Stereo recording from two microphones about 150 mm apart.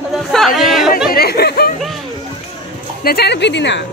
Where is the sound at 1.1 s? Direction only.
90° left.